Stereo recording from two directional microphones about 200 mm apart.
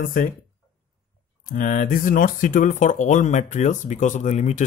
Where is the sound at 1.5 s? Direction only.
40° left (ahead or behind).